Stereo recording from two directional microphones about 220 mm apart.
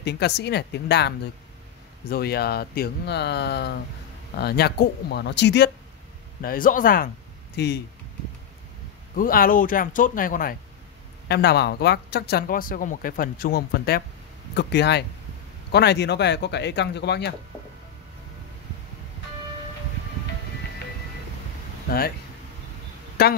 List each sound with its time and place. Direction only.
0.0 s speech: 50° left (ahead or behind)
6.4 s speech: 40° left (ahead or behind)
9.1 s speech: 40° left (ahead or behind)
21.8 s speech: 45° left (ahead or behind)
23.2 s speech: 45° left (ahead or behind)